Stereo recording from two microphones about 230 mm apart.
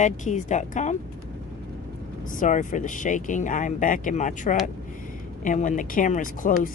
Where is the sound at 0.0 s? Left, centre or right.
Left.